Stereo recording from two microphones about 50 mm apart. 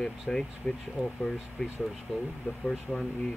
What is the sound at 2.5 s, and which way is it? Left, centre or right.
Speech, left.